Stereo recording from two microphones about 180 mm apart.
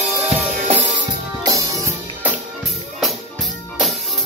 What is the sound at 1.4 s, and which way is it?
Music, 20° right (ahead or behind).